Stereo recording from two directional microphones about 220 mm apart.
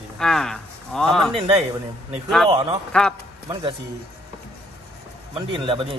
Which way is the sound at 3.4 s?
15° right (ahead or behind).